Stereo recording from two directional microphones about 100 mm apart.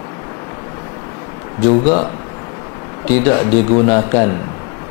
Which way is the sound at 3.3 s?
25° left (ahead or behind).